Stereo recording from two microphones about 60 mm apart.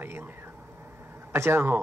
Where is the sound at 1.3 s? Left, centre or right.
Right.